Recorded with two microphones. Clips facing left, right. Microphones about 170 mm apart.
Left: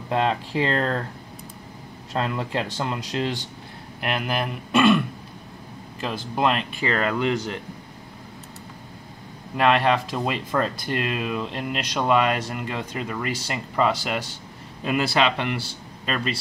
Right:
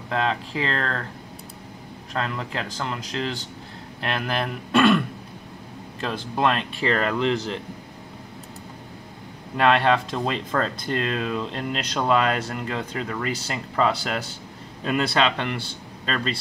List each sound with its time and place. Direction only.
0.1 s speech: 20° left (ahead or behind)
2.1 s speech: 20° left (ahead or behind)
4.0 s speech: 10° left (ahead or behind)
9.6 s a man's voice: 5° left (ahead or behind)